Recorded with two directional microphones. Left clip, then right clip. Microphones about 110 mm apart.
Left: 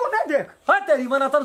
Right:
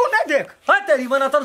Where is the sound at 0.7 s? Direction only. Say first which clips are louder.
Right 2 dB; 5° right (ahead or behind).